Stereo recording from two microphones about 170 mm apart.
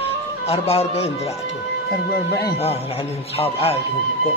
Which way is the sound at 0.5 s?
35° left (ahead or behind).